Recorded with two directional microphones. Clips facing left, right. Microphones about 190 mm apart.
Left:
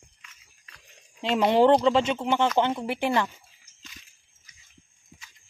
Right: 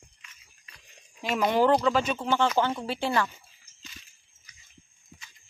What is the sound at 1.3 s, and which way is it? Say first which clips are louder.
Speech: left 4 dB; 25° left (ahead or behind).